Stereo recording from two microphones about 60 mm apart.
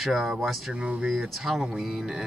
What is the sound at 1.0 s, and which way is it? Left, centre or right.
Speech, centre.